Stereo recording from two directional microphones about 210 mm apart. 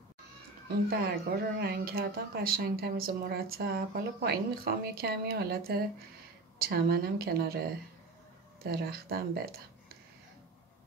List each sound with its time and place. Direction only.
0.7 s a woman's voice: 45° right (ahead or behind)
8.6 s a woman's voice: 45° right (ahead or behind)